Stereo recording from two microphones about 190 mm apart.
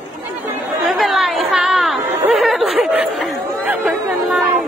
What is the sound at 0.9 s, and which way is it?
Chatter, centre (ahead or behind).